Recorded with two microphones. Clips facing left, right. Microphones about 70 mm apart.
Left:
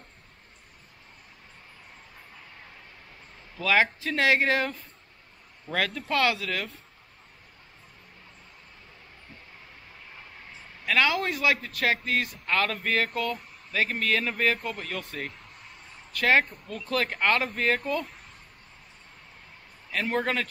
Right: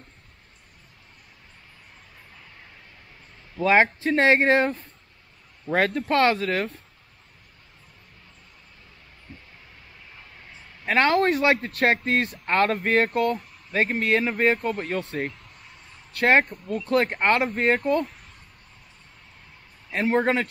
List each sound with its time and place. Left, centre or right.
3.5 s speech: right
10.9 s speech: right
19.9 s speech: right